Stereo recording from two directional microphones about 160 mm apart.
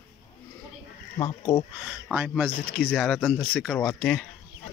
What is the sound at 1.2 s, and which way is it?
Snake, 30° left (ahead or behind).